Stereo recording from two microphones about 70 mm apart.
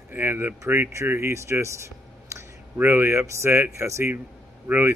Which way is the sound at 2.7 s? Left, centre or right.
Right.